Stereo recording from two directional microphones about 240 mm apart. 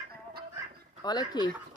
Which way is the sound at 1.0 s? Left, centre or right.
Centre.